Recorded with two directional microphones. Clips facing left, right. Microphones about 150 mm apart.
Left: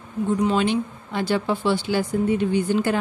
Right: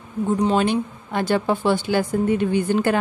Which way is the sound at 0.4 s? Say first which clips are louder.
Right 2 dB; 40° right (ahead or behind).